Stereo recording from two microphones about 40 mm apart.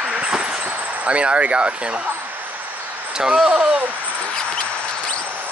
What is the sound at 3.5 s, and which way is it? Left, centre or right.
Speech, right.